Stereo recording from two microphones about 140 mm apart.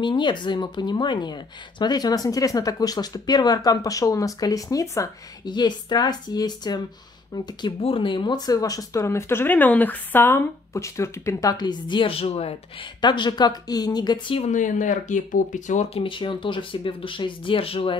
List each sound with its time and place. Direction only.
0.0 s speech: 35° left (ahead or behind)
13.0 s speech: 35° left (ahead or behind)
14.5 s speech: 65° left (ahead or behind)
16.0 s speech: 35° left (ahead or behind)